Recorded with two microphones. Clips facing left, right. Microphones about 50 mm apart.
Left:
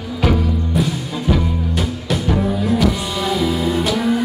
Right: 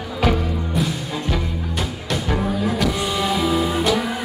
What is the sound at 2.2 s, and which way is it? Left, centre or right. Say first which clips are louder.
Music: left 3 dB; centre.